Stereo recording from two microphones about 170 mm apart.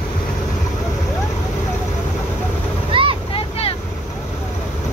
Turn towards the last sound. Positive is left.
turn(degrees=35)  # may be behind; listen again after turning